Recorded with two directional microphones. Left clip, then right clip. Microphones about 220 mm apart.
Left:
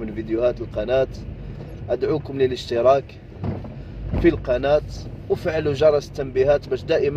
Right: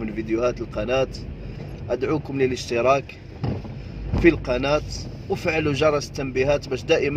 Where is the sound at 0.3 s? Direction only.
15° right (ahead or behind).